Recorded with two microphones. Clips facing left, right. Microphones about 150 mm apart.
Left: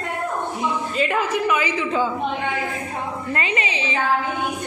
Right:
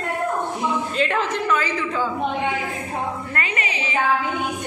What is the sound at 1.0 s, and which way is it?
A woman's voice, 5° left (ahead or behind).